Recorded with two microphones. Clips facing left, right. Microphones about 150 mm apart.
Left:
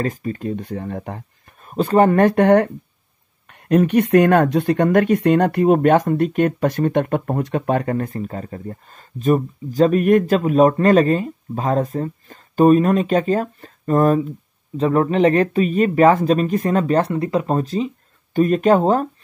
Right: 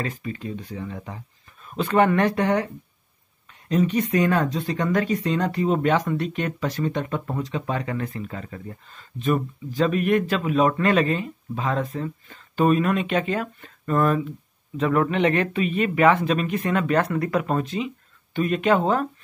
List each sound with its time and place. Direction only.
0.0 s speech: 45° left (ahead or behind)